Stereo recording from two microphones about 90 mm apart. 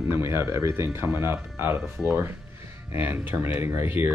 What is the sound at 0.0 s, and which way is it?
Speech, 30° right (ahead or behind).